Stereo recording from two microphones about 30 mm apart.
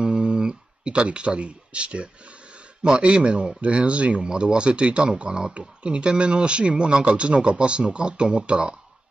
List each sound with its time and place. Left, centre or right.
0.0 s a sound: right
1.0 s a man's voice: right
4.2 s a man's voice: right